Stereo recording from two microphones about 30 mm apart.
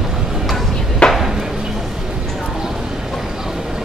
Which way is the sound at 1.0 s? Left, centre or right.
Left.